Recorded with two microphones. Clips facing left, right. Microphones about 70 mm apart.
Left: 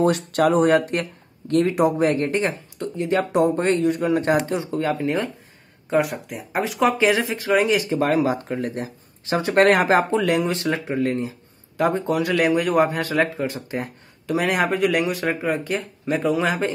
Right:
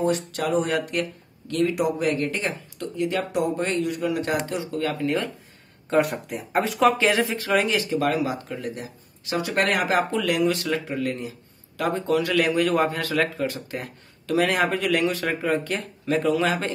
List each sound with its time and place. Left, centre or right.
0.0 s speech: left
5.9 s speech: centre
7.6 s speech: left